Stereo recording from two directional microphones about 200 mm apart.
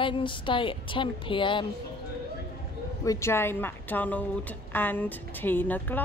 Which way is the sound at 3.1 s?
15° left (ahead or behind).